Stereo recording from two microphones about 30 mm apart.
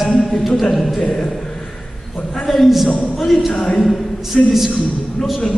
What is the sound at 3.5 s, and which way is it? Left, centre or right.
Speech, left.